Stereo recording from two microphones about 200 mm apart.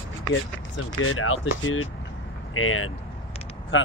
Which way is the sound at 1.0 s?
90° left.